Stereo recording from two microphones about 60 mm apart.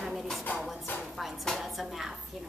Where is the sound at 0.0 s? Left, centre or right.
Centre.